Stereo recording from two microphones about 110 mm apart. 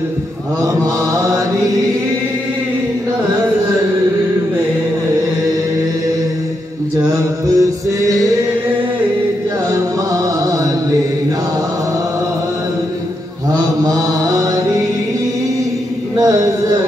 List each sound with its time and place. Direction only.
7.4 s music: 30° right (ahead or behind)
10.4 s music: 30° right (ahead or behind)
16.2 s a sound: 35° right (ahead or behind)